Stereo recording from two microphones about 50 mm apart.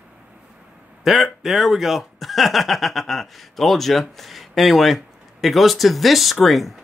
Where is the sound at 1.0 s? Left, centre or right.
Centre.